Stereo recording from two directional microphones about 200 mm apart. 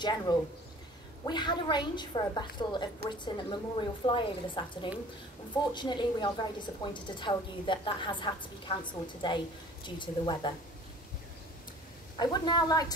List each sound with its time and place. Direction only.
0.0 s a woman's voice: 20° left (ahead or behind)
5.7 s a woman's voice: 20° left (ahead or behind)
12.2 s a woman's voice: 20° left (ahead or behind)